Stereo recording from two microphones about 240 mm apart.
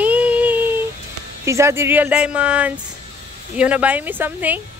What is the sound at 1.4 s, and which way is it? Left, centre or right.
Speech, centre.